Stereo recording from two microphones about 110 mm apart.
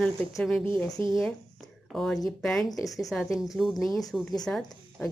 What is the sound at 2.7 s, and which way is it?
Speech, 30° left (ahead or behind).